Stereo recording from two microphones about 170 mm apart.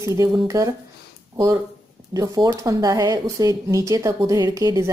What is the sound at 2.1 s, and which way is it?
A woman's voice, 20° right (ahead or behind).